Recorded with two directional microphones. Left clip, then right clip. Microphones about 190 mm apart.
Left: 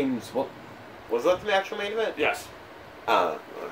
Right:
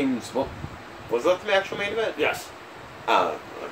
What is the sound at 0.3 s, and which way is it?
Speech, 5° left (ahead or behind).